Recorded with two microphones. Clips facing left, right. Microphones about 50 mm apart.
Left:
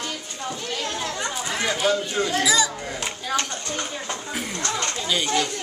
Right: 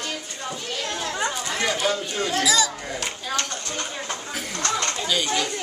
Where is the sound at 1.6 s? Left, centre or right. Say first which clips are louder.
Left 1 dB; centre.